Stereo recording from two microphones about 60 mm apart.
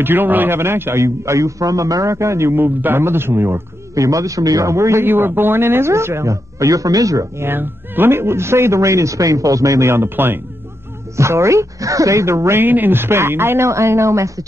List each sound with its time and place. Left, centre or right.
0.0 s speech: right
2.5 s speech: right
3.9 s speech: right
5.0 s speech: right
6.3 s speech: right
7.3 s speech: right
9.8 s speech: right
11.1 s speech: right
12.6 s speech: right
13.7 s speech: right